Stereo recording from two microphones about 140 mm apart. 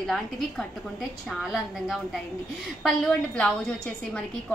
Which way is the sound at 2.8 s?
5° left (ahead or behind).